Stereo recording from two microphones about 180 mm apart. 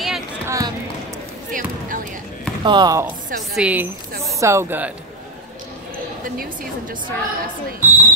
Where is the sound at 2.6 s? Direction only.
25° right (ahead or behind).